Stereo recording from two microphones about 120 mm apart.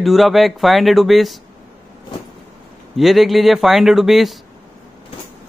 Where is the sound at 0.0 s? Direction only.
Centre (ahead or behind).